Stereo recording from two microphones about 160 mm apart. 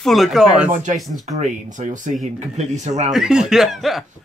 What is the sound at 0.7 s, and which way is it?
Speech, 50° right (ahead or behind).